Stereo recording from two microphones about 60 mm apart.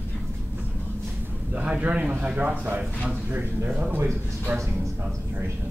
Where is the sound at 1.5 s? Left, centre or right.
Right.